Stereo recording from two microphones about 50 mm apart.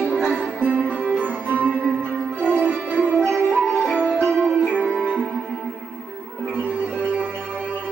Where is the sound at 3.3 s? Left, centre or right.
Left.